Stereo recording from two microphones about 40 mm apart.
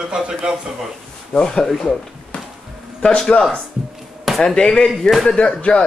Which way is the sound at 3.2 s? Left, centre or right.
Centre.